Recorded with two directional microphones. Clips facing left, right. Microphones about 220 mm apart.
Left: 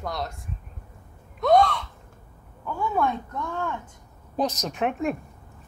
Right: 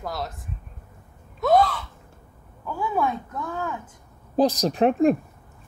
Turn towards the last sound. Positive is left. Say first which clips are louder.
# right 8 dB
turn(degrees=-35)  # may be behind; listen again after turning